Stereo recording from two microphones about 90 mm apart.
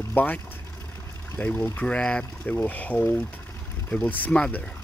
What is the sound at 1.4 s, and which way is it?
Speech, 20° left (ahead or behind).